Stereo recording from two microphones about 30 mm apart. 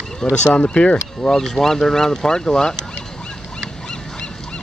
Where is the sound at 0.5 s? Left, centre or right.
Left.